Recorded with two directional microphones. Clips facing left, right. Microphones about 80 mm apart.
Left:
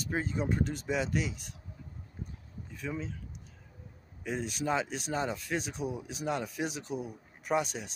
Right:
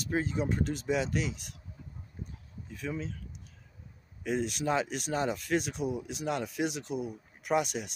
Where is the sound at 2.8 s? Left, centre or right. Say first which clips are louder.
Right 1 dB; centre.